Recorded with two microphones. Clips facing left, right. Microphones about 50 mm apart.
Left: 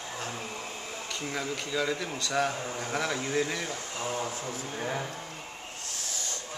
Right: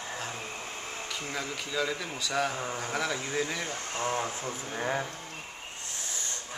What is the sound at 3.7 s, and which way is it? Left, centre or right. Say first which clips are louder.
Speech: right 2 dB; right.